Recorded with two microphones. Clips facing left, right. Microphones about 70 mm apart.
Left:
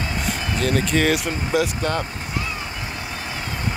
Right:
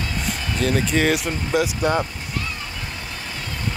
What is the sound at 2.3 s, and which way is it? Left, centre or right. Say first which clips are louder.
Vehicle: left 2 dB; centre.